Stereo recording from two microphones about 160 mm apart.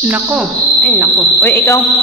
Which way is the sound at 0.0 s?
10° right (ahead or behind).